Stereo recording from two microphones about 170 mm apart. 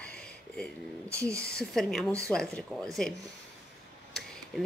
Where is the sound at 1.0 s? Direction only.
15° right (ahead or behind).